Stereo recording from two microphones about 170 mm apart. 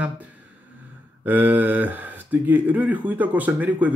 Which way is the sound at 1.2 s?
10° right (ahead or behind).